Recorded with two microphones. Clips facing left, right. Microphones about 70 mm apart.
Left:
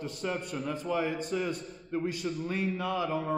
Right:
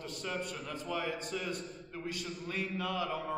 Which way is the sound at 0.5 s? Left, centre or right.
Left.